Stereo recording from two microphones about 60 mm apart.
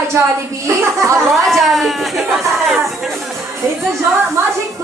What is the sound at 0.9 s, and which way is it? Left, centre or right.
Music, right.